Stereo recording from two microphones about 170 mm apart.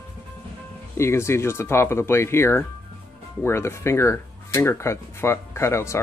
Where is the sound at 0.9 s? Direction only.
15° left (ahead or behind).